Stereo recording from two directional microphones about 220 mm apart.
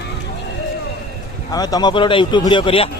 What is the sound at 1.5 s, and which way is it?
Speech, 15° left (ahead or behind).